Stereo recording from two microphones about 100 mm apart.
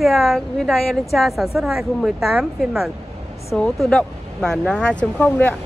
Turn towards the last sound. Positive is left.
turn(degrees=15)  # may be behind; listen again after turning